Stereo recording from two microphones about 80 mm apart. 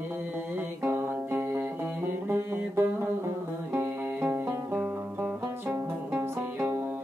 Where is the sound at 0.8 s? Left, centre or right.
Right.